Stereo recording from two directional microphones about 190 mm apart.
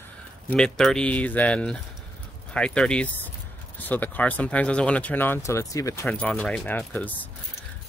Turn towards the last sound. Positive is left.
turn(degrees=10)  # may be behind; listen again after turning